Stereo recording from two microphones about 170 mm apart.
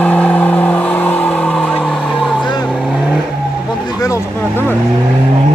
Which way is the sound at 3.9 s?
20° left (ahead or behind).